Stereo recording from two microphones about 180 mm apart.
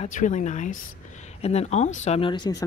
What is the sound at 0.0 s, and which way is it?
A woman's voice, 45° left (ahead or behind).